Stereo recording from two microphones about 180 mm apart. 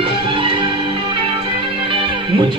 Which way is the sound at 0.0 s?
30° right (ahead or behind).